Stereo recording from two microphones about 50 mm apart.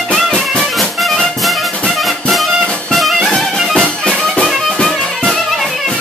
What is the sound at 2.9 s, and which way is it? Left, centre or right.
Music, centre.